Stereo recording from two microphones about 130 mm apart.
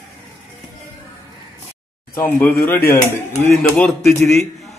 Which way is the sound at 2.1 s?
15° left (ahead or behind).